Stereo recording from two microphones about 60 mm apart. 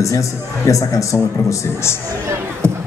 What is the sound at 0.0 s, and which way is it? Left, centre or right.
A man's voice, left.